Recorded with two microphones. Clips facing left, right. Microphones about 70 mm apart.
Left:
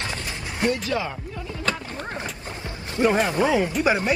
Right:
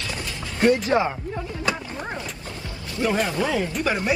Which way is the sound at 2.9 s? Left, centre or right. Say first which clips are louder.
Left 3 dB; left.